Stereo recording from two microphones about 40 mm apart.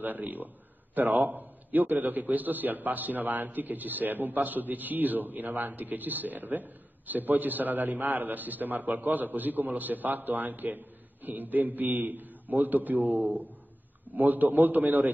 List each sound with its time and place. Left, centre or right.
0.0 s a man's voice: right